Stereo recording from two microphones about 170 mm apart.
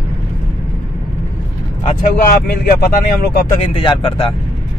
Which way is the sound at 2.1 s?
65° left (ahead or behind).